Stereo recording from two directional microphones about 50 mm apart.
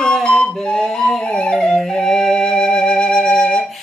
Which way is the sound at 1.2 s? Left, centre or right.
Centre.